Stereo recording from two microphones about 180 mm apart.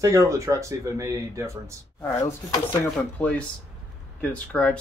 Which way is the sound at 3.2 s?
5° left (ahead or behind).